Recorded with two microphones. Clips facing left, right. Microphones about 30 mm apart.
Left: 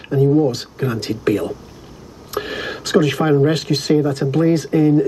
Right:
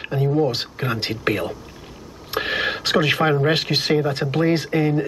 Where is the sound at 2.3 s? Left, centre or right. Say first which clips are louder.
Right 2 dB; right.